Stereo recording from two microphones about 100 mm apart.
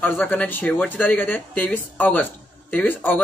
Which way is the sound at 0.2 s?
15° left (ahead or behind).